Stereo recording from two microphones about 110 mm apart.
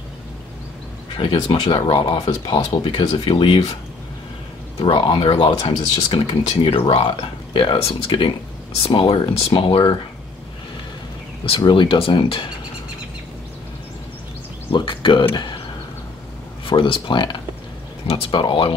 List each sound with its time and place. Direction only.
1.1 s speech: 50° left (ahead or behind)
4.8 s speech: 45° left (ahead or behind)
11.4 s speech: 55° left (ahead or behind)
14.7 s a sound: 50° left (ahead or behind)
16.6 s speech: 50° left (ahead or behind)